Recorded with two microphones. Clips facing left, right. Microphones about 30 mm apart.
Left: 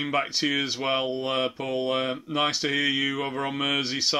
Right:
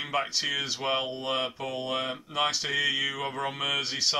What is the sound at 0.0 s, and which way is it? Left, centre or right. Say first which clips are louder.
Speech: left 3 dB; centre.